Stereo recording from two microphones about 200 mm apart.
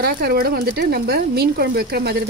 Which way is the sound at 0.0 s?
50° right (ahead or behind).